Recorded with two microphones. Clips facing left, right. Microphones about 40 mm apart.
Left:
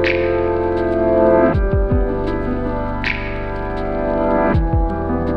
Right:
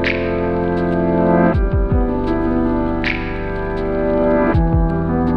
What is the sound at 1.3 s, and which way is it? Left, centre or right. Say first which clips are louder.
Music: left 1 dB; centre.